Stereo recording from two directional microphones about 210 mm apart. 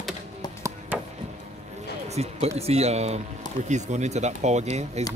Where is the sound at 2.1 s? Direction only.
30° right (ahead or behind).